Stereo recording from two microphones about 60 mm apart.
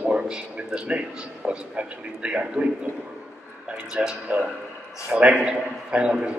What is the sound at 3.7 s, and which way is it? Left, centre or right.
A man's voice, centre.